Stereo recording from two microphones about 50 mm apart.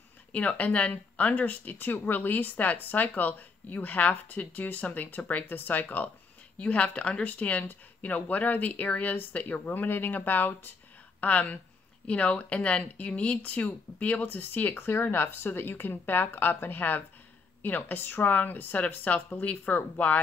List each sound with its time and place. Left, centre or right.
0.3 s speech: left
6.6 s speech: left
9.4 s speech: left
13.4 s speech: left
14.2 s speech: left